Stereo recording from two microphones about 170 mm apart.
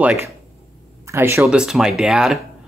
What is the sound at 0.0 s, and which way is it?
Speech, 10° right (ahead or behind).